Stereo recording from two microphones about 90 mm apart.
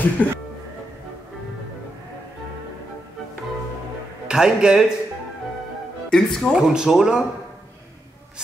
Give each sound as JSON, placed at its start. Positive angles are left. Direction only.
{"t": 0.2, "sound": "speech", "side_deg": 15}
{"t": 4.3, "sound": "speech", "side_deg": -10}
{"t": 6.0, "sound": "speech", "side_deg": 5}
{"t": 6.7, "sound": "speech", "side_deg": -5}